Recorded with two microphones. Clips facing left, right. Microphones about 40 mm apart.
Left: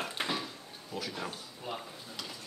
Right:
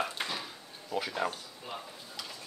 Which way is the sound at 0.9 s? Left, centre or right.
Right.